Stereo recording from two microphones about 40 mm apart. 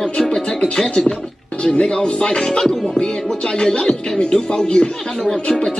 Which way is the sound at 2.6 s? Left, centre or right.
Centre.